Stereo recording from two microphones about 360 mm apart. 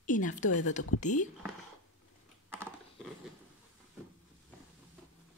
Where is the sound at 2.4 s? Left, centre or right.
Centre.